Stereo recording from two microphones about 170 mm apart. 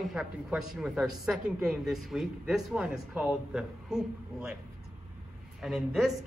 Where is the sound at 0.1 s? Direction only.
5° right (ahead or behind).